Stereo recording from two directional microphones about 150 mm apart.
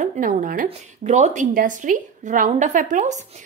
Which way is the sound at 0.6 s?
50° right (ahead or behind).